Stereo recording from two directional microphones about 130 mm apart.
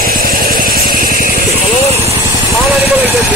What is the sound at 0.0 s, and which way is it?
Vehicle, 90° right.